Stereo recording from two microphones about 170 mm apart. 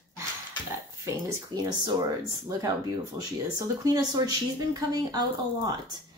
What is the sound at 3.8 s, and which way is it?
A woman's voice, 20° right (ahead or behind).